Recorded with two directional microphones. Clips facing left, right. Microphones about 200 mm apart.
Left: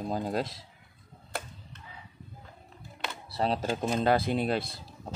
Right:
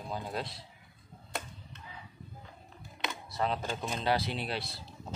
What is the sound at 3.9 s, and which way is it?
Speech, 50° left (ahead or behind).